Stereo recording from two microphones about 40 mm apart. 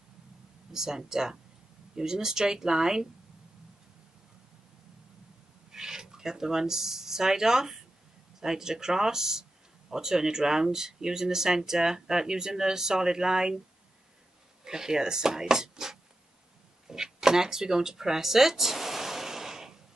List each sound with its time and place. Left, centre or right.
0.7 s speech: centre
5.7 s speech: centre
14.6 s speech: centre
16.8 s a sound: centre